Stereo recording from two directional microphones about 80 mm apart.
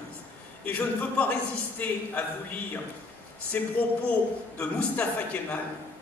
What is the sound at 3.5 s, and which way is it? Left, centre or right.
A man's voice, centre.